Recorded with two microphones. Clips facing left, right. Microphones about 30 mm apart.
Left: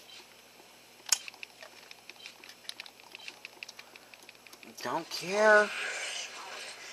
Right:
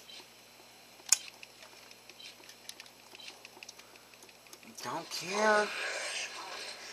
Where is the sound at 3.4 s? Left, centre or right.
Left.